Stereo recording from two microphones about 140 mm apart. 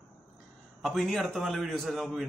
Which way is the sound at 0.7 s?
Centre (ahead or behind).